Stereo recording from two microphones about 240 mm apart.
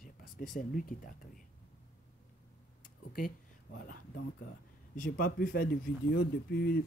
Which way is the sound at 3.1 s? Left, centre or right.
Left.